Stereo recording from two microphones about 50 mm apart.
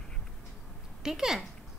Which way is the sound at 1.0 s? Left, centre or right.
Centre.